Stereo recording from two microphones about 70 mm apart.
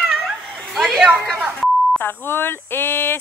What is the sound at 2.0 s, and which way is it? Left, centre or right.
Speech, left.